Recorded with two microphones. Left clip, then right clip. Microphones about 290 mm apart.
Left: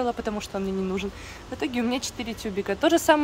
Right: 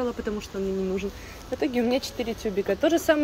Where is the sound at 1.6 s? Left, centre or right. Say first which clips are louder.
Right 3 dB; left.